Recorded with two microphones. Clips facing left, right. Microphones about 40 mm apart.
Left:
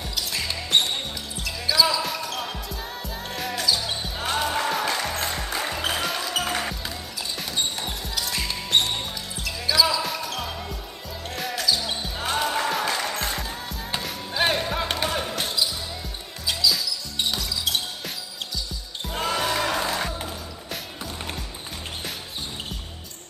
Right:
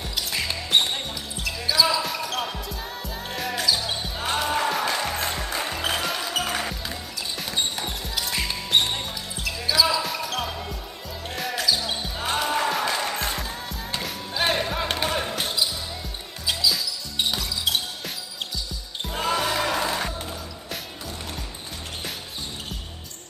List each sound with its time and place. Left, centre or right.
0.1 s music: centre
1.7 s basketball bounce: centre
5.1 s music: centre
5.4 s music: centre
8.2 s basketball bounce: centre
13.1 s music: centre
14.6 s basketball bounce: centre
16.4 s music: centre